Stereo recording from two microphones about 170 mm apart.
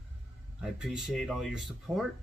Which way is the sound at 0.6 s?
5° right (ahead or behind).